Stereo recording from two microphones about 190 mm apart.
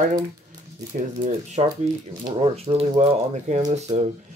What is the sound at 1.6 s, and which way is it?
Speech, 30° right (ahead or behind).